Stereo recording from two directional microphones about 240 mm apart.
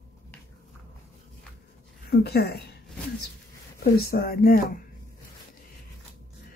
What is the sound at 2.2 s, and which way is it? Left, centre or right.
Speech, left.